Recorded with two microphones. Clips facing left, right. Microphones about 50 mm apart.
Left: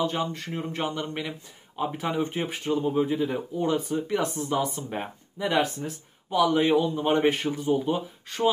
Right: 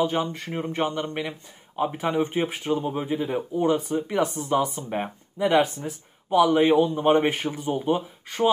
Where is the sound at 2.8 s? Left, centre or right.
Right.